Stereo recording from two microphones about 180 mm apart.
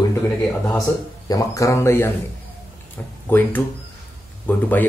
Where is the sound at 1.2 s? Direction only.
20° left (ahead or behind).